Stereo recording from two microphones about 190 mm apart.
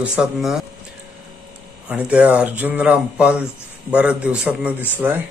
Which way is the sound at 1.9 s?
5° right (ahead or behind).